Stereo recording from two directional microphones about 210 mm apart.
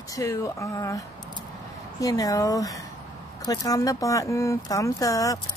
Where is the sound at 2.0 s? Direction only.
15° left (ahead or behind).